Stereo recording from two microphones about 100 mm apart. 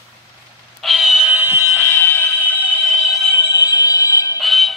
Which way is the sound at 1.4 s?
20° right (ahead or behind).